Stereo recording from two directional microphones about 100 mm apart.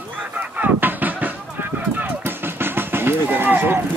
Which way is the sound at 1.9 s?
20° right (ahead or behind).